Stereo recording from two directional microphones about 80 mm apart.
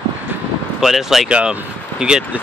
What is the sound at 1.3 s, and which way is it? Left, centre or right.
Speech, centre.